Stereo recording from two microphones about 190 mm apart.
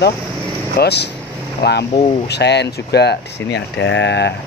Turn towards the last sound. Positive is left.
turn(degrees=65)  # may be behind; listen again after turning